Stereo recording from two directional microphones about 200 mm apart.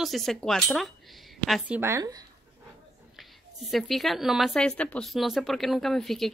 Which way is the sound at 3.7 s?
Centre (ahead or behind).